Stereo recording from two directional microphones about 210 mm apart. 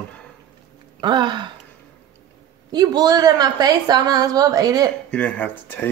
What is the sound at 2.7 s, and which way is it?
A woman's voice, 20° right (ahead or behind).